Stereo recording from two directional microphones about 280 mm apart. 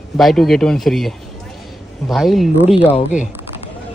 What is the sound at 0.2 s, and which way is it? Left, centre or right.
Speech, centre.